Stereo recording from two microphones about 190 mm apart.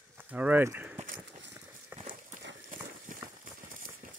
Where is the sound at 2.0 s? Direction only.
40° right (ahead or behind).